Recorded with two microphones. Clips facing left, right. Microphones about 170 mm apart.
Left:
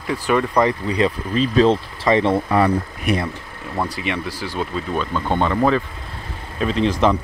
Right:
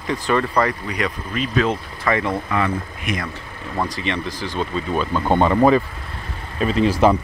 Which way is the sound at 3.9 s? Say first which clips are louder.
Even; 10° left (ahead or behind).